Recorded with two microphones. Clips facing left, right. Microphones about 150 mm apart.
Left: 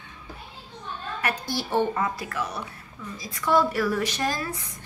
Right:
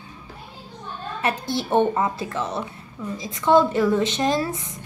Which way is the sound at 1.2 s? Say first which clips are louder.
Right 5 dB; 25° right (ahead or behind).